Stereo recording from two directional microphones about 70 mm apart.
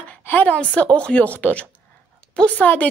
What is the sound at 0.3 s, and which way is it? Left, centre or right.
A woman's voice, left.